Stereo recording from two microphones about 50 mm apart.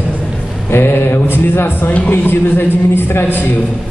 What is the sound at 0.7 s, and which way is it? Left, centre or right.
Mantra, left.